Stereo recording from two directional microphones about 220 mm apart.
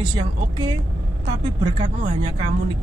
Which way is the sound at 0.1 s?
20° right (ahead or behind).